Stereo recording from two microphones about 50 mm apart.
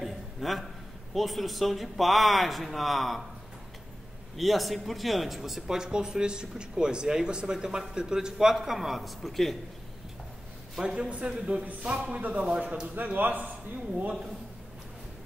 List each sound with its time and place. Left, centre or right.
0.0 s a sound: centre
1.1 s speech: centre
4.4 s speech: centre
10.8 s a man's voice: centre
12.2 s a man's voice: right